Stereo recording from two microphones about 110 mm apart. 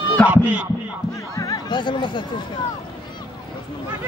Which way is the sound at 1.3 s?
30° left (ahead or behind).